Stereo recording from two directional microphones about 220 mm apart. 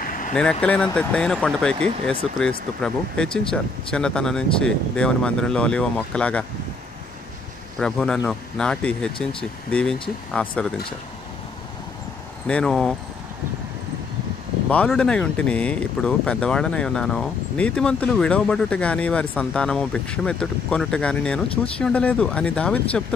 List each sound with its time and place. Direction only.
0.0 s vehicle: 40° left (ahead or behind)
0.3 s speech: 5° left (ahead or behind)
7.8 s speech: 5° left (ahead or behind)
12.4 s speech: 5° left (ahead or behind)
14.7 s speech: 5° left (ahead or behind)